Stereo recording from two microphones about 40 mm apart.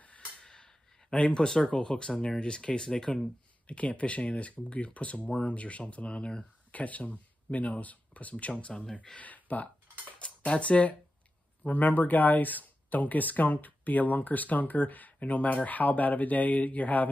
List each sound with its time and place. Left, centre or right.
0.4 s a sound: centre
2.4 s speech: left
3.6 s speech: left
6.7 s speech: left
10.1 s speech: left
11.6 s speech: left